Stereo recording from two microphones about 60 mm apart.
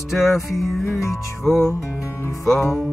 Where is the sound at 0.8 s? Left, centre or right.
Left.